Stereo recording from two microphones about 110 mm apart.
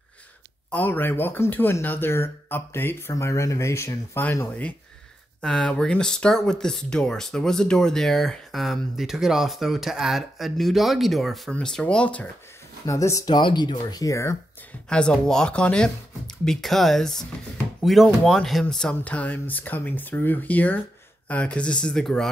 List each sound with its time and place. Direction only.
0.7 s speech: 15° left (ahead or behind)
5.4 s speech: 5° left (ahead or behind)
12.8 s speech: 30° left (ahead or behind)
14.9 s speech: 10° left (ahead or behind)